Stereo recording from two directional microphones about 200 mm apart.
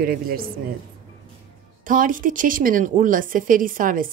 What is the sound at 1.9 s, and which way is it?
Speech, 45° right (ahead or behind).